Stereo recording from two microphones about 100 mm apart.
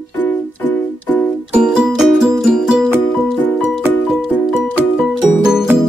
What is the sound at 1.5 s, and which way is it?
Music, 5° right (ahead or behind).